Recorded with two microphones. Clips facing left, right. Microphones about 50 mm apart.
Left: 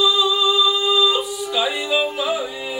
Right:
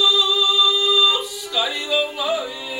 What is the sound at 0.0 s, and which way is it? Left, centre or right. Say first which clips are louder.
Music: left 1 dB; centre.